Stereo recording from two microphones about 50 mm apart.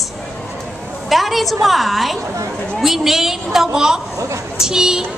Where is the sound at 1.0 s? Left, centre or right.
Centre.